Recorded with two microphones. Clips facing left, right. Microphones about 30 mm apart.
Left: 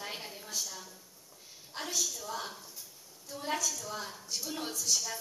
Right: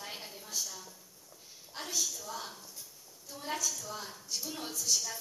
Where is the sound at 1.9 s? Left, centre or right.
Centre.